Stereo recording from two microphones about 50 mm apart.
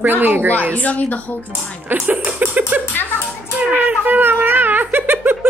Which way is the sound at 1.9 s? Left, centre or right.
Right.